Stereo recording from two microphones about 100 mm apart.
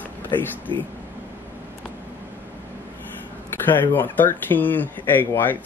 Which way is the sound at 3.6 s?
20° left (ahead or behind).